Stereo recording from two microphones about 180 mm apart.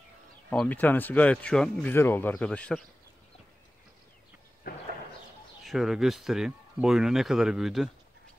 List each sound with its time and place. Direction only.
0.5 s speech: 10° left (ahead or behind)
4.7 s a sound: 60° left (ahead or behind)
5.7 s speech: centre (ahead or behind)